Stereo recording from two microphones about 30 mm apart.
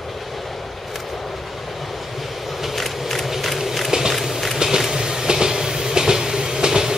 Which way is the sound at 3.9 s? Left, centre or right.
Centre.